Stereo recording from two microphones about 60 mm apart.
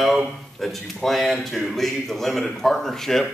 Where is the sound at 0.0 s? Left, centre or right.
Centre.